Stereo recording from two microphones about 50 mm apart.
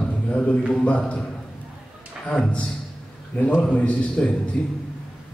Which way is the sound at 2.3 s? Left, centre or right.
Left.